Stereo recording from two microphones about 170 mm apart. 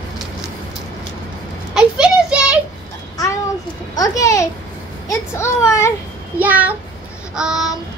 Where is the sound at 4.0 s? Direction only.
20° left (ahead or behind).